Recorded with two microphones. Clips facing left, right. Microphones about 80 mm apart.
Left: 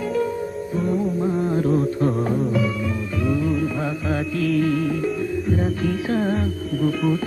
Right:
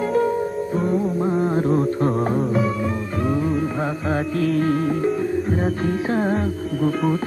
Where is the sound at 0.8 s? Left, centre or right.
Right.